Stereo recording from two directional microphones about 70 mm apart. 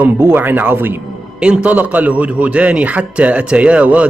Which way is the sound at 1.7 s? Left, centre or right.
Right.